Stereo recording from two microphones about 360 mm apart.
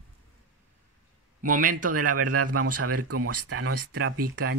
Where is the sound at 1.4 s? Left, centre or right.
Right.